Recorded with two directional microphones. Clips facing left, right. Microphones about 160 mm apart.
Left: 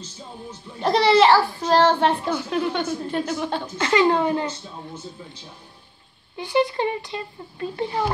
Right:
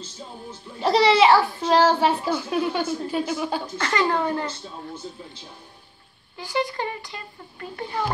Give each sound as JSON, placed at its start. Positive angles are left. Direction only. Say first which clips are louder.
{"t": 0.5, "sound": "a woman's voice", "louder": "even", "side_deg": -5}
{"t": 3.7, "sound": "speech", "louder": "left 6 dB", "side_deg": 20}
{"t": 6.3, "sound": "speech", "louder": "left 5 dB", "side_deg": 20}